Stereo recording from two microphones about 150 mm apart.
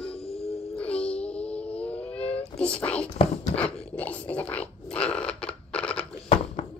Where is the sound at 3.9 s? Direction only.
10° left (ahead or behind).